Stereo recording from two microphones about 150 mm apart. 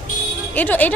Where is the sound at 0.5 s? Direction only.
10° left (ahead or behind).